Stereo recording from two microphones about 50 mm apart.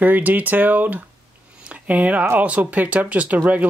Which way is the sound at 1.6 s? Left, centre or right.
Right.